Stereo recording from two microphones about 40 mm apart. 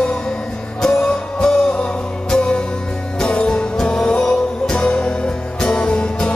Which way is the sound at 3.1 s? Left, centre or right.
Left.